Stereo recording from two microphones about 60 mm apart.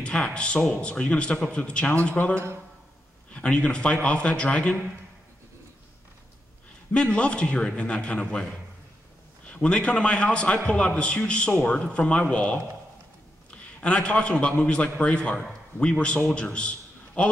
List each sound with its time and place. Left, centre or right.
0.0 s a man's voice: centre
3.3 s a man's voice: centre
6.9 s a man's voice: centre
9.5 s a man's voice: centre